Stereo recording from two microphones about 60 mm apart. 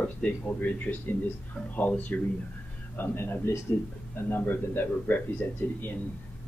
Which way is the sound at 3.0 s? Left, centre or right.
Left.